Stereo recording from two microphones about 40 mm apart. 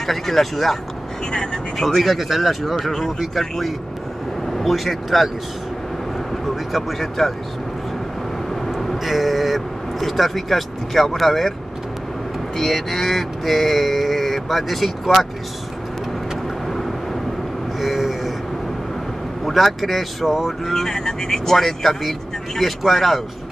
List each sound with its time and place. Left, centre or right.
0.0 s speech: centre
1.3 s vehicle: centre
1.8 s speech: centre
6.4 s speech: centre
8.6 s vehicle: centre
8.9 s speech: centre
12.5 s speech: centre
16.6 s vehicle: centre
17.7 s a sound: centre
19.4 s speech: centre
20.2 s a sound: centre
20.6 s speech: centre